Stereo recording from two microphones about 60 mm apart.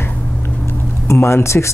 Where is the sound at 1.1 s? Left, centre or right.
Left.